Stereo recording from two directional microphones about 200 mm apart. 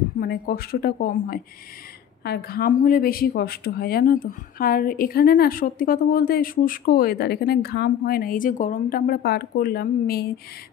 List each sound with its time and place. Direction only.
0.2 s speech: 50° left (ahead or behind)